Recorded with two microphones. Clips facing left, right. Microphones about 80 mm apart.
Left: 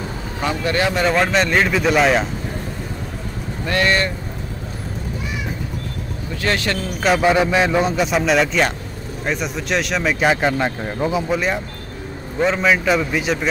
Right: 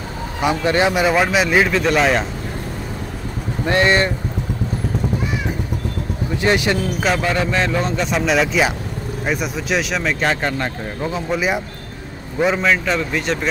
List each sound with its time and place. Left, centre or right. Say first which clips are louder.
0.4 s speech: right 3 dB; centre
1.0 s speech: right 1 dB; centre
3.6 s speech: right 3 dB; right
6.3 s speech: right 4 dB; centre
7.2 s speech: left 4 dB; centre
11.2 s speech: even; centre
12.6 s speech: left 2 dB; centre